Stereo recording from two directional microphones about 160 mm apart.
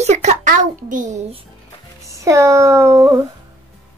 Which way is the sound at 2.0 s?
20° right (ahead or behind).